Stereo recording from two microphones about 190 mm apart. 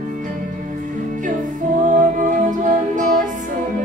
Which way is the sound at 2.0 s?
45° right (ahead or behind).